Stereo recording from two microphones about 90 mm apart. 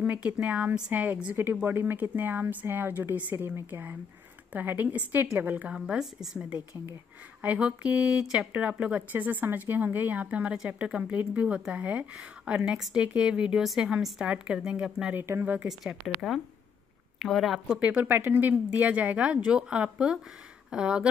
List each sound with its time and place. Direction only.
0.0 s a woman's voice: 15° right (ahead or behind)
5.8 s speech: 5° right (ahead or behind)
15.1 s a woman's voice: 25° right (ahead or behind)
15.8 s speech: 5° right (ahead or behind)
17.7 s speech: 15° right (ahead or behind)